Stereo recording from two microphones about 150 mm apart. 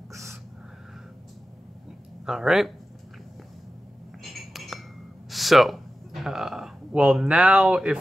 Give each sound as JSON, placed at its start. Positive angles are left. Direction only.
{"t": 0.1, "sound": "gasp", "side_deg": -20}
{"t": 2.2, "sound": "speech", "side_deg": -5}
{"t": 4.2, "sound": "cutlery", "side_deg": 0}
{"t": 5.3, "sound": "speech", "side_deg": 0}